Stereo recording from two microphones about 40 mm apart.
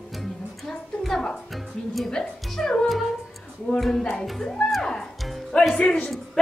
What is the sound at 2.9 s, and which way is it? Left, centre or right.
Music, centre.